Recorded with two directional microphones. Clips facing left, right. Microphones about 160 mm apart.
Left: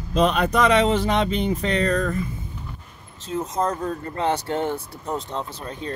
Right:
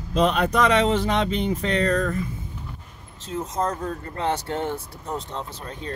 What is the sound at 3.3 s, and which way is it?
Speech, 10° left (ahead or behind).